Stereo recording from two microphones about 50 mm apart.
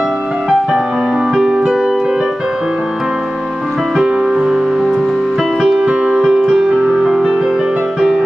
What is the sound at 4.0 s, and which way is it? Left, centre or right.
Music, centre.